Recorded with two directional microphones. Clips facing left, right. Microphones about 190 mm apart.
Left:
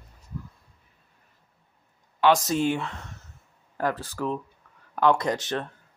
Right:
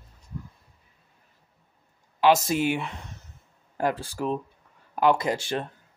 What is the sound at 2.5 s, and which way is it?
Speech, 10° right (ahead or behind).